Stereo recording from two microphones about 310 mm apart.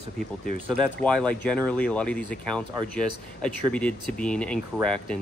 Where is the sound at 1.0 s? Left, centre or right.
Centre.